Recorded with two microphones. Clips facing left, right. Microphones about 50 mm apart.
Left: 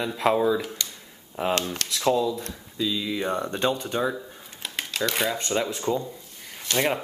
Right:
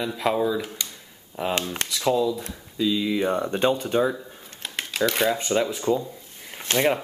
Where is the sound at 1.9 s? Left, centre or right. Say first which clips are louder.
Right 1 dB; centre.